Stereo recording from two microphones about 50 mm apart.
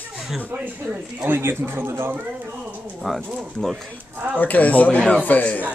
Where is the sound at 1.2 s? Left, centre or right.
Right.